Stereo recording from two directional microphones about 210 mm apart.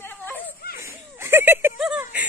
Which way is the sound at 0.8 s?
15° right (ahead or behind).